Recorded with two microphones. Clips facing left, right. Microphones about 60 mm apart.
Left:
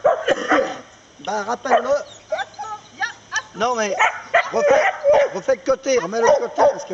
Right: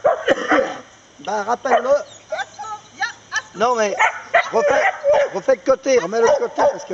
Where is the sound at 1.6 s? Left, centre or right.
Centre.